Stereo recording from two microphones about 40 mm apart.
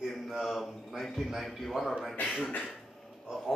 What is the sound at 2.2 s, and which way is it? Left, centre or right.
Speech, left.